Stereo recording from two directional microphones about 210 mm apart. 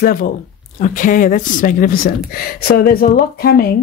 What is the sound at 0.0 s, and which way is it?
Speech, 40° left (ahead or behind).